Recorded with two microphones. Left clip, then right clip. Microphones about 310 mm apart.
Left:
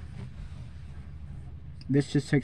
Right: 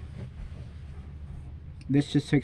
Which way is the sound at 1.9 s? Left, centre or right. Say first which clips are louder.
Right 1 dB; right.